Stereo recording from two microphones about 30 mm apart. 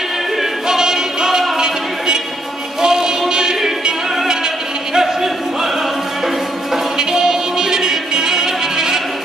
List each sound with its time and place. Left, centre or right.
0.4 s music: centre
2.8 s music: right
4.9 s a sound: centre
7.0 s music: centre